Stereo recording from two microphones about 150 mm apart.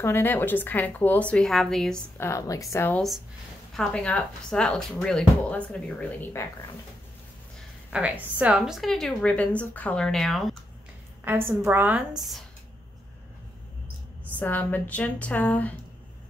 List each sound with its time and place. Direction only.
0.0 s speech: 15° left (ahead or behind)
2.1 s a woman's voice: 20° left (ahead or behind)
3.7 s speech: 5° left (ahead or behind)
7.9 s a woman's voice: 10° right (ahead or behind)
11.2 s a woman's voice: 15° right (ahead or behind)
12.2 s a woman's voice: centre (ahead or behind)
14.4 s speech: 10° left (ahead or behind)